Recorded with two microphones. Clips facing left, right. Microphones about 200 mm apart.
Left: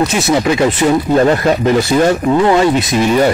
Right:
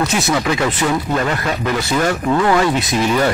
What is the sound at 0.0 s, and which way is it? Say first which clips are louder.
Speech: left 5 dB; 25° left (ahead or behind).